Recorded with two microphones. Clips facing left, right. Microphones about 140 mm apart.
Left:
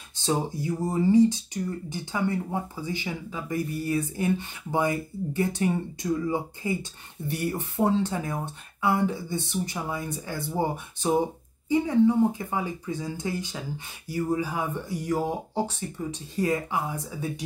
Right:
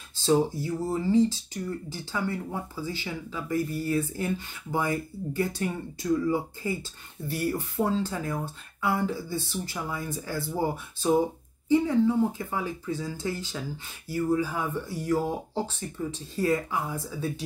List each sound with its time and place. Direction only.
0.2 s speech: 15° left (ahead or behind)
12.3 s speech: 15° left (ahead or behind)